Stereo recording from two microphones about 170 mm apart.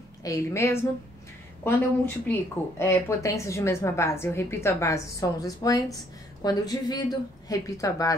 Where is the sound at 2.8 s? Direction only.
15° left (ahead or behind).